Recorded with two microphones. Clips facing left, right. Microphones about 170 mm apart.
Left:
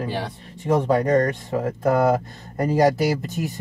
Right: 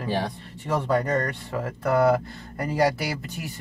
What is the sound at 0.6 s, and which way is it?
Speech, 40° left (ahead or behind).